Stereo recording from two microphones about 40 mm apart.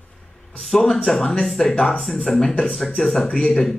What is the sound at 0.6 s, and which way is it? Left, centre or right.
Speech, centre.